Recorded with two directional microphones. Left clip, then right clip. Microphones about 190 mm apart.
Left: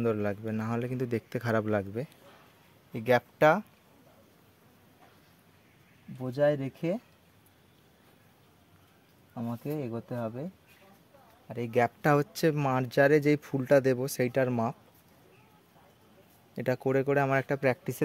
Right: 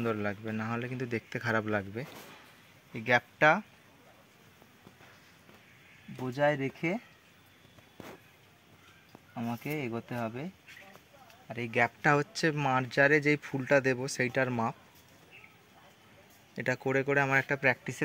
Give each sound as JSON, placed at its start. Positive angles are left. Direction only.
{"t": 0.0, "sound": "speech", "side_deg": 65}
{"t": 6.2, "sound": "speech", "side_deg": 40}
{"t": 9.3, "sound": "speech", "side_deg": 35}
{"t": 11.4, "sound": "speech", "side_deg": 70}
{"t": 16.5, "sound": "speech", "side_deg": 65}